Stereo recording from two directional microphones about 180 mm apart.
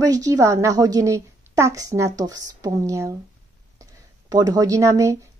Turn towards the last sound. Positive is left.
turn(degrees=-15)  # may be behind; listen again after turning